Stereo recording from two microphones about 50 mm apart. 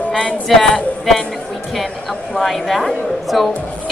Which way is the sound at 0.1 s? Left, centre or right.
Centre.